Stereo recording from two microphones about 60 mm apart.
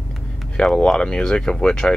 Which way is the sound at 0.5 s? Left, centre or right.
Centre.